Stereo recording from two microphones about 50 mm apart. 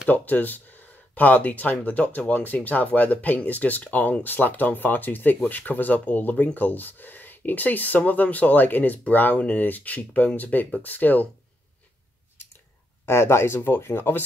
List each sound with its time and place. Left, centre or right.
0.1 s speech: left
13.0 s speech: left